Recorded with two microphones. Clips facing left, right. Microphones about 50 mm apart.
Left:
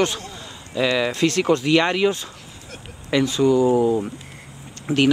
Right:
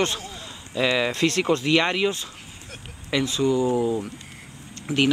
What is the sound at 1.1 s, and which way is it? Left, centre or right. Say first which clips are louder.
Speech: left 2 dB; right.